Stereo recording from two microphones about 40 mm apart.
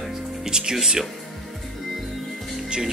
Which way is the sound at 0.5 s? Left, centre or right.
Centre.